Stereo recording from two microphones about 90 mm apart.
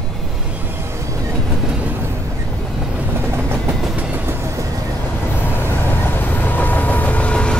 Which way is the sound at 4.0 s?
20° right (ahead or behind).